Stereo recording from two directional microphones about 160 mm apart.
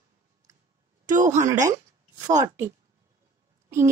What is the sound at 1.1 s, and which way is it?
Speech, 50° right (ahead or behind).